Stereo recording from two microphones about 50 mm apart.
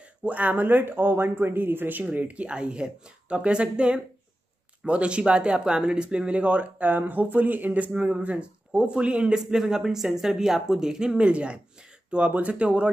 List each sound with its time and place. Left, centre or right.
0.2 s speech: right